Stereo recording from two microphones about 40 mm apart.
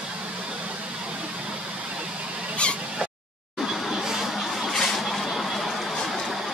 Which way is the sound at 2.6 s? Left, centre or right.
Left.